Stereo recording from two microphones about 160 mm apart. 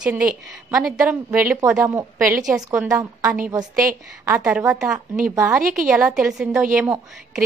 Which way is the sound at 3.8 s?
60° right (ahead or behind).